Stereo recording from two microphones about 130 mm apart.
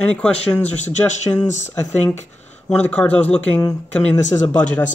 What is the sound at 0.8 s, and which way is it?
Speech, 60° left (ahead or behind).